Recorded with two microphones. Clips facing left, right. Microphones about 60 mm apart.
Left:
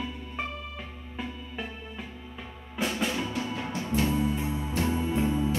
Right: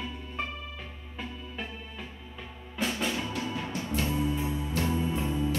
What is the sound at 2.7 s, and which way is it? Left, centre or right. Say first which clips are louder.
Drum: left 1 dB; centre.